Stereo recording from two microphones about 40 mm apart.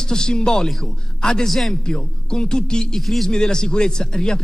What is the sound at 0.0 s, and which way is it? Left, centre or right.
A man's voice, centre.